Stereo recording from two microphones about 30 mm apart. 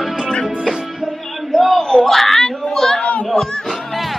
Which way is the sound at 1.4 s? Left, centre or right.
Centre.